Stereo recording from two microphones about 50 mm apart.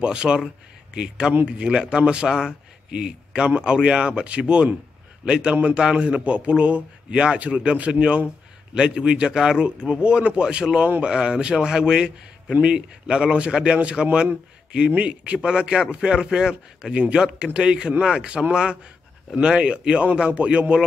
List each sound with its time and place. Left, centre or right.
0.0 s a man's voice: centre